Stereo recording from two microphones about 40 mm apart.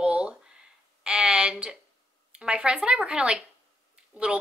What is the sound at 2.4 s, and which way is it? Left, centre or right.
A woman's voice, right.